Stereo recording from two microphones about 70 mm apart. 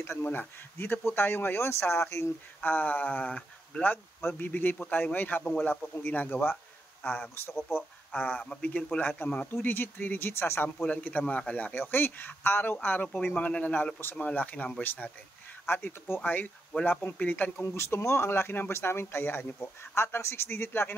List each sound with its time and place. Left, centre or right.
0.0 s speech: left
2.6 s a man's voice: left
7.1 s speech: left
17.6 s speech: left